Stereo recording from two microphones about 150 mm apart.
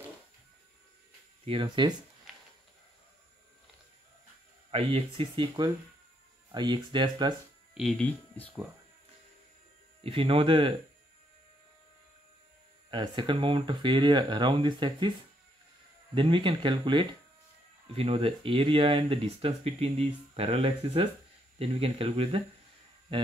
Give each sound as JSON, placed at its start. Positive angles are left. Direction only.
{"t": 1.4, "sound": "speech", "side_deg": -35}
{"t": 4.6, "sound": "speech", "side_deg": -40}
{"t": 7.7, "sound": "speech", "side_deg": 0}
{"t": 10.0, "sound": "speech", "side_deg": -40}
{"t": 12.9, "sound": "speech", "side_deg": -30}
{"t": 16.2, "sound": "speech", "side_deg": -35}